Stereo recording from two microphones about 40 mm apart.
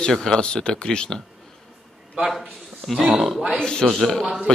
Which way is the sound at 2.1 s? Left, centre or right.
Centre.